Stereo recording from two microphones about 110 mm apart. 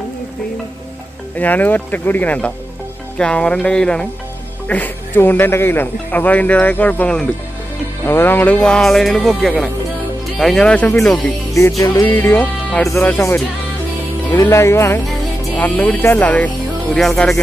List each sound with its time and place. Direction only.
1.3 s speech: 15° left (ahead or behind)
12.0 s speech: 20° left (ahead or behind); by 17.4 s 5° left (ahead or behind)